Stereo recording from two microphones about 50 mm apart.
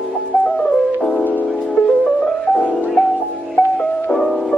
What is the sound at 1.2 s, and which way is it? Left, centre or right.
Music, left.